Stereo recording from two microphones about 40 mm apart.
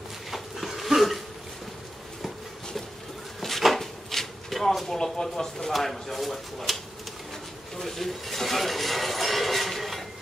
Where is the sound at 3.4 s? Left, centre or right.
Centre.